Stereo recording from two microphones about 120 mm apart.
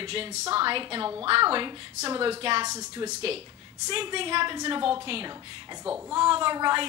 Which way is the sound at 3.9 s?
45° right (ahead or behind).